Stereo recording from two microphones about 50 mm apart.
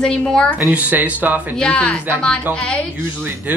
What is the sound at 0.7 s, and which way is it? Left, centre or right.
Speech, right.